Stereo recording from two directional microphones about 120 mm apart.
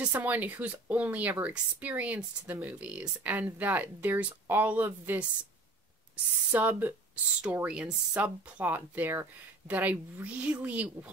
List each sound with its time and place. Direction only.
0.0 s speech: 15° right (ahead or behind)
6.5 s speech: 15° right (ahead or behind)